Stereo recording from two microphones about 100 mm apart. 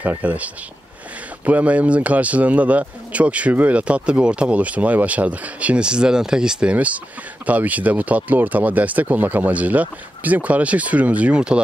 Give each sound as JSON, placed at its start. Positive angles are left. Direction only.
{"t": 0.0, "sound": "speech", "side_deg": -15}